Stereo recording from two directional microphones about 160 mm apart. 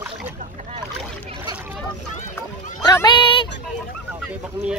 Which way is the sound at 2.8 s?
25° left (ahead or behind).